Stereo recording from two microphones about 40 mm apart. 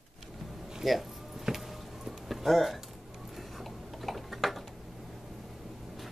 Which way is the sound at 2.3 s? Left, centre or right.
Centre.